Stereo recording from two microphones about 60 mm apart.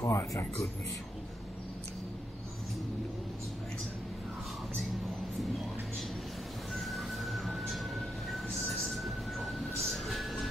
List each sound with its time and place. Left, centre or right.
0.0 s speech: left
6.7 s train: centre